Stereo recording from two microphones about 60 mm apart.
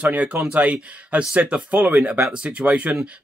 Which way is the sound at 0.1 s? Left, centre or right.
Right.